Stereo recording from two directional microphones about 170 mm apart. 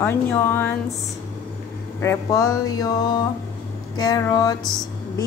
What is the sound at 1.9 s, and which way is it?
Speech, 15° left (ahead or behind).